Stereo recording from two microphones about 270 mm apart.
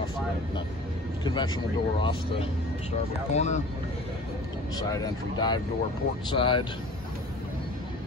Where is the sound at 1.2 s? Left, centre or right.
Centre.